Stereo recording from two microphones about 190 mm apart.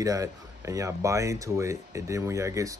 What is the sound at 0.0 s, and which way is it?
Speech, 15° right (ahead or behind).